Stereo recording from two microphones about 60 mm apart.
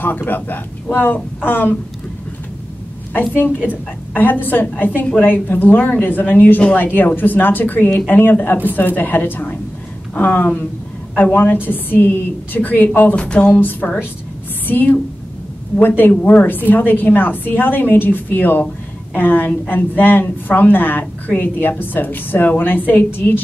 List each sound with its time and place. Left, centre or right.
0.0 s a woman's voice: left
3.1 s a woman's voice: left
13.1 s a sound: centre
13.4 s a woman's voice: left
16.1 s a woman's voice: left